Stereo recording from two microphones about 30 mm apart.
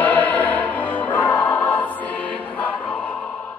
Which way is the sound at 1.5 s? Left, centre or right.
Left.